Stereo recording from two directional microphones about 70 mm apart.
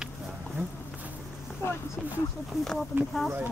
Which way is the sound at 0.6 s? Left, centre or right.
Right.